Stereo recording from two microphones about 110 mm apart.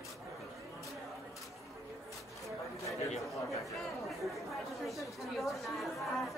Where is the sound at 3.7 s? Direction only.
Centre (ahead or behind).